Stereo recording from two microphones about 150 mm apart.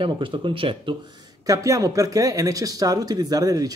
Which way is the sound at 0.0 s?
35° right (ahead or behind).